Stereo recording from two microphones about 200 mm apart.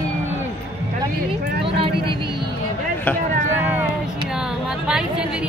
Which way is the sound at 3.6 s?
10° right (ahead or behind).